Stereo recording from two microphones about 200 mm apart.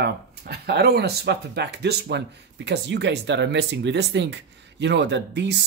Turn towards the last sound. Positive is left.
turn(degrees=-60)  # may be behind; listen again after turning